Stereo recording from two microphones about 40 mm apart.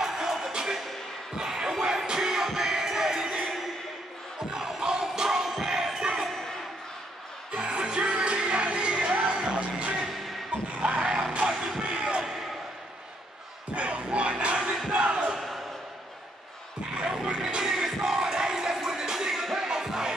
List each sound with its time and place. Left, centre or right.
0.0 s music: centre
1.3 s basketball bounce: centre
1.8 s music: centre
4.5 s music: centre
5.9 s a sound: centre
7.5 s music: right
10.8 s vehicle: right
11.3 s music: centre
13.7 s a sound: right
14.9 s battle cry: right
15.3 s crowd: centre
16.9 s music: right